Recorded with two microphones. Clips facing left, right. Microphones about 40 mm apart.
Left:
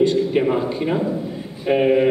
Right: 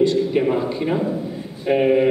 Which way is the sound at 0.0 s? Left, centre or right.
Centre.